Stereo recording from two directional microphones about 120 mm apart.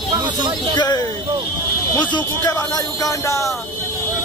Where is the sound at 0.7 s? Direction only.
35° left (ahead or behind).